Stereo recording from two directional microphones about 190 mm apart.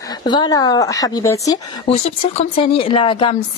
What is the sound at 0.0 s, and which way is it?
A woman's voice, 20° left (ahead or behind).